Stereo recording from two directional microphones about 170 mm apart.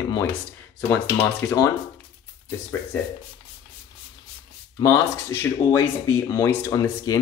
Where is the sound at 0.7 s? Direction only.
10° left (ahead or behind).